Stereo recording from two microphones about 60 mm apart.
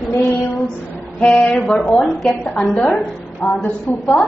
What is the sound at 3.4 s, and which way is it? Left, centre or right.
Speech, centre.